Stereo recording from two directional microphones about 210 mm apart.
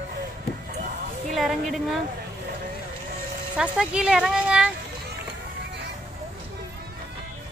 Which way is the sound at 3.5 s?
5° right (ahead or behind).